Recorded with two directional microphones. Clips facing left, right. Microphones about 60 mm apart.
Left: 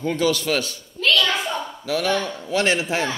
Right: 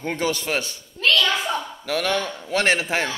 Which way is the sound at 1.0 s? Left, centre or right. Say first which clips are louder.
Even; right.